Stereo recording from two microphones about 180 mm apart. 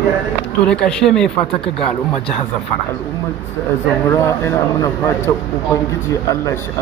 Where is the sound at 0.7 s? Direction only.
5° left (ahead or behind).